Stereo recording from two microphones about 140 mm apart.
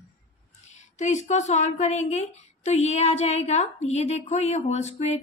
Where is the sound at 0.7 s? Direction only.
55° left (ahead or behind).